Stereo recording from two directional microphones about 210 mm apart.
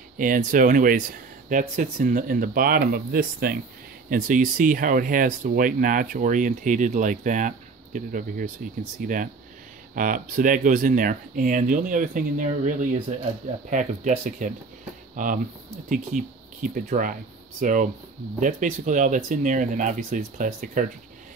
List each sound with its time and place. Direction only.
0.2 s speech: 40° right (ahead or behind)